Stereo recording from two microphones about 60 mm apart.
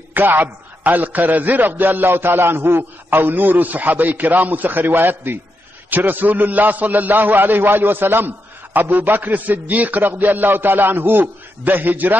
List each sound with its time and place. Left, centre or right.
0.1 s a man's voice: right